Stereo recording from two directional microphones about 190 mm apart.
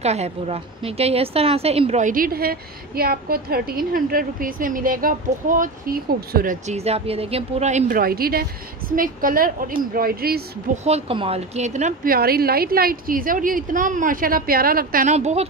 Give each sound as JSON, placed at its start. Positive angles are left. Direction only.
{"t": 0.0, "sound": "a woman's voice", "side_deg": -35}
{"t": 10.9, "sound": "a woman's voice", "side_deg": -30}